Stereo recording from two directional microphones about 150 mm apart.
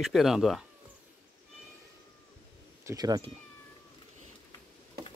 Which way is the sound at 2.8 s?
20° right (ahead or behind).